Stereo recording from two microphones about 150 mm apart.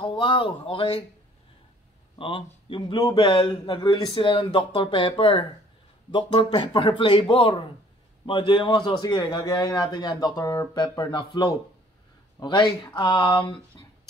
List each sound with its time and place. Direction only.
0.0 s speech: 30° left (ahead or behind)
2.1 s a man's voice: 35° left (ahead or behind)